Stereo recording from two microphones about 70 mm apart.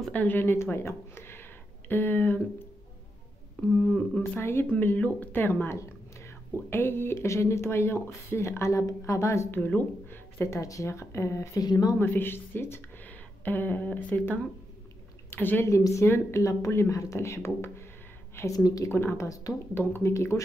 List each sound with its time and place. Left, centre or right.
0.1 s speech: left
3.8 s speech: centre
4.4 s speech: left
9.5 s a woman's voice: left
10.6 s speech: left
11.6 s speech: left
12.0 s speech: left
15.2 s a sound: left
15.6 s speech: left
18.5 s a woman's voice: left
18.9 s speech: left
19.2 s a woman's voice: left
19.7 s speech: left